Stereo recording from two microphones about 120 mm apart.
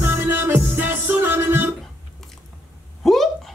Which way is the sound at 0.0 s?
20° right (ahead or behind).